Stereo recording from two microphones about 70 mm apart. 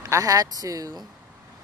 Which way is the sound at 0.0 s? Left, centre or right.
Right.